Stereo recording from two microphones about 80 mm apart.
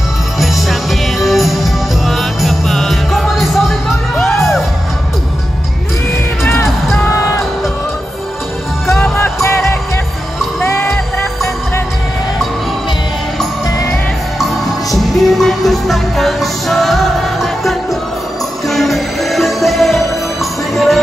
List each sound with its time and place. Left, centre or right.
0.4 s music: centre
9.0 s music: left
10.6 s music: left
14.4 s music: centre